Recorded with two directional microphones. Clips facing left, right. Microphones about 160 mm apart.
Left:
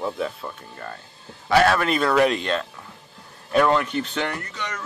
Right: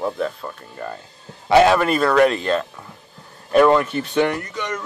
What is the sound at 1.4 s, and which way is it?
Speech, 20° right (ahead or behind).